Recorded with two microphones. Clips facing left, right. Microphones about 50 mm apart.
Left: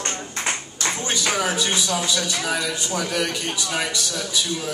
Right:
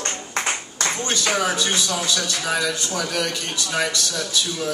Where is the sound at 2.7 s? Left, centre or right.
Centre.